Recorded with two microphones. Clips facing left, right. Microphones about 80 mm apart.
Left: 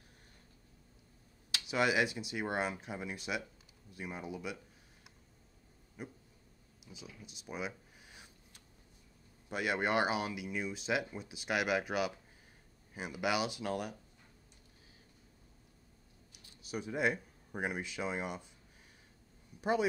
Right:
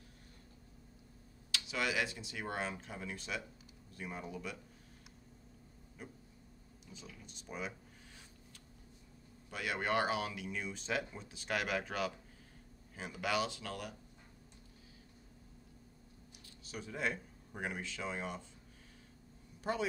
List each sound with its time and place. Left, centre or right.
1.5 s speech: left
6.9 s a sound: centre
9.5 s speech: left
16.4 s speech: centre